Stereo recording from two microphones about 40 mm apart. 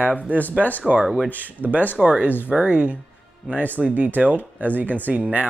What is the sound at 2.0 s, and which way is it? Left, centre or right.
Speech, right.